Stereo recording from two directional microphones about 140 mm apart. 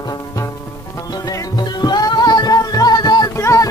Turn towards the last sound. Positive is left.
turn(degrees=25)  # may be behind; listen again after turning